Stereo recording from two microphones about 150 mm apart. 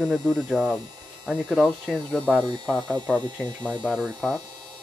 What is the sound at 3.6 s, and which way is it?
Speech, 10° left (ahead or behind).